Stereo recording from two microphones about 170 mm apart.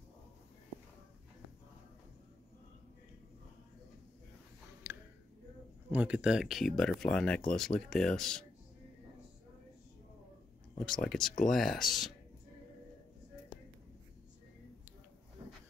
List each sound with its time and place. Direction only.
4.9 s a sound: 15° right (ahead or behind)
5.9 s speech: 10° right (ahead or behind)
10.8 s speech: centre (ahead or behind)